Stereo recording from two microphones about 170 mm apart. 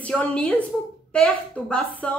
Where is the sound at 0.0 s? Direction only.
5° left (ahead or behind).